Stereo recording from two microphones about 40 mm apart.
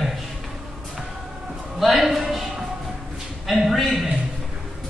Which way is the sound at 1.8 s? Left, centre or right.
Centre.